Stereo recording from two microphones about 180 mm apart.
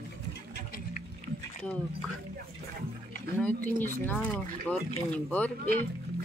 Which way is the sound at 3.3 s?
10° left (ahead or behind).